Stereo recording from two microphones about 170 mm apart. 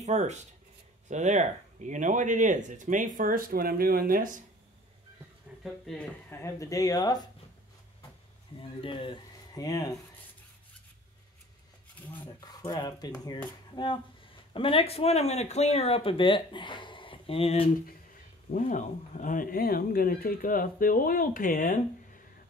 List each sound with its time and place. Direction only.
0.0 s speech: 40° right (ahead or behind)
5.6 s speech: centre (ahead or behind)
6.3 s speech: 20° left (ahead or behind)
8.5 s speech: 30° left (ahead or behind)
12.4 s speech: 25° left (ahead or behind)
18.5 s speech: 50° left (ahead or behind)